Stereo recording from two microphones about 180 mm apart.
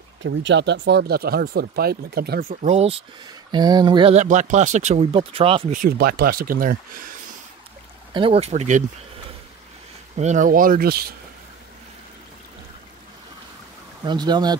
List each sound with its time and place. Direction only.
0.2 s speech: 90° right; by 2.4 s 60° right (ahead or behind)
2.6 s speech: 35° right (ahead or behind)
3.5 s speech: 25° right (ahead or behind)
5.7 s speech: 50° right (ahead or behind)
8.1 s speech: 30° right (ahead or behind)
10.1 s speech: 40° right (ahead or behind); by 11.1 s 60° right (ahead or behind)
14.0 s speech: 25° right (ahead or behind)